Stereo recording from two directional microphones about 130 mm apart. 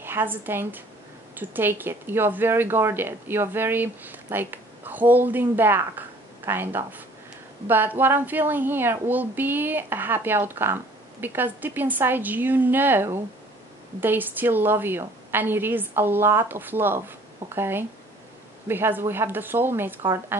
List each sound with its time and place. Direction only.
0.0 s speech: 15° right (ahead or behind)